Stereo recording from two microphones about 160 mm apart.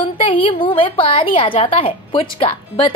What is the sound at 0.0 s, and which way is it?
A woman's voice, 35° left (ahead or behind).